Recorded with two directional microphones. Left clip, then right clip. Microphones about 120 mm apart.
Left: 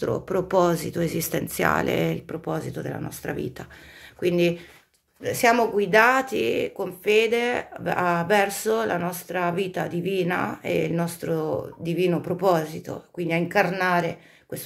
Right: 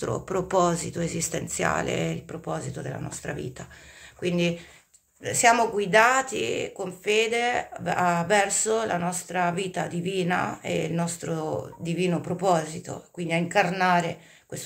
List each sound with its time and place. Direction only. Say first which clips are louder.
0.0 s speech: left 3 dB; 15° left (ahead or behind); by 4.6 s 40° left (ahead or behind)
5.2 s speech: even; 25° left (ahead or behind)